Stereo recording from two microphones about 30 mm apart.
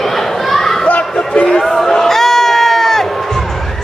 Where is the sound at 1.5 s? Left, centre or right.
Centre.